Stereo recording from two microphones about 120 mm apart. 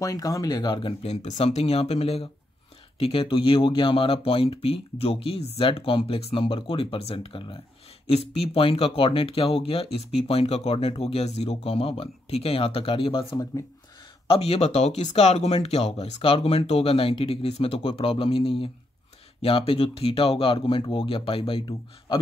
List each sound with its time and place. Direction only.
0.0 s speech: 30° left (ahead or behind)
1.0 s speech: 75° left (ahead or behind); by 7.5 s 45° left (ahead or behind)
8.1 s speech: 60° left (ahead or behind)